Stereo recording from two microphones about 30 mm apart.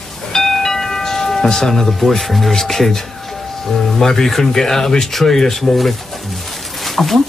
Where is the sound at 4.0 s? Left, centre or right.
Centre.